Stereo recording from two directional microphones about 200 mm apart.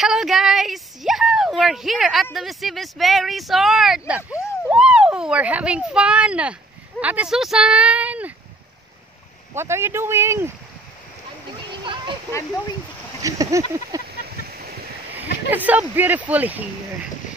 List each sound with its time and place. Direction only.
0.0 s speech: centre (ahead or behind)
9.6 s speech: 10° right (ahead or behind)
11.8 s a sound: 25° right (ahead or behind)
13.2 s speech: 15° right (ahead or behind)
14.2 s a sound: 50° right (ahead or behind)
15.1 s speech: 10° right (ahead or behind)